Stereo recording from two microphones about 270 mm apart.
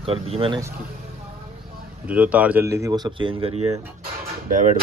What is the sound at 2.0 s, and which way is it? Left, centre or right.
Speech, centre.